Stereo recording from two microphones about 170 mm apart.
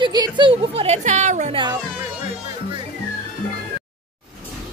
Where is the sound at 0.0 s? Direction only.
25° right (ahead or behind); by 1.5 s 45° right (ahead or behind).